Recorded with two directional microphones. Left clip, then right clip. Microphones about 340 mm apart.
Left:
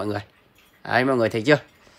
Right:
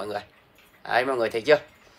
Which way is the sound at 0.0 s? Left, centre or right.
Centre.